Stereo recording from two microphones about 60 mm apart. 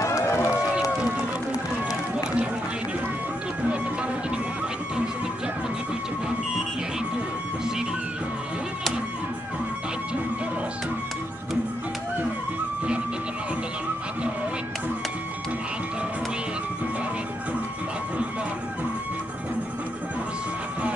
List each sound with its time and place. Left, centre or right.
0.0 s run: left